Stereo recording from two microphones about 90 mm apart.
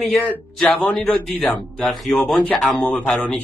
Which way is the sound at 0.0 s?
Centre (ahead or behind).